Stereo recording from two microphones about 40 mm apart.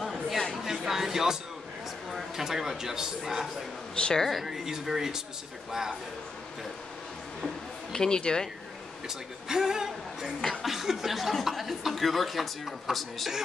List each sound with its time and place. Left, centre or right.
0.7 s a sound: centre
2.1 s speech: centre
3.9 s a woman's voice: left
4.2 s speech: centre
4.5 s speech: centre
7.9 s speech: centre
9.5 s speech: centre